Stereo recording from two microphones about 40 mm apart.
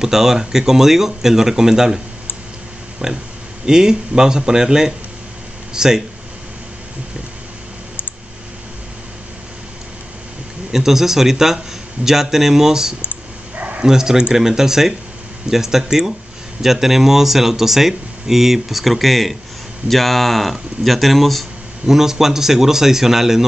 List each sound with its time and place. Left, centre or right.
0.0 s speech: centre
3.0 s speech: right
10.7 s speech: centre
21.8 s speech: centre